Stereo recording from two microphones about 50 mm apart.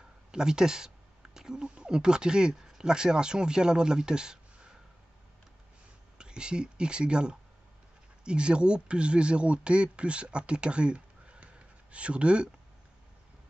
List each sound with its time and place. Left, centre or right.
0.3 s speech: centre
6.1 s speech: centre